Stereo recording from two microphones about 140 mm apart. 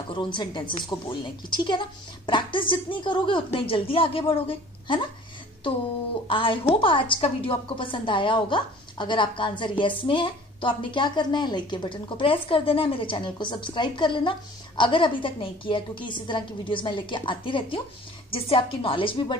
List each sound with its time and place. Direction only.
0.1 s a woman's voice: 35° left (ahead or behind)
6.2 s a woman's voice: 35° left (ahead or behind)